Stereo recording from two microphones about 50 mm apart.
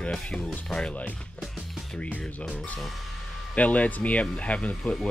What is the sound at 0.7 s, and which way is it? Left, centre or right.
Speech, left.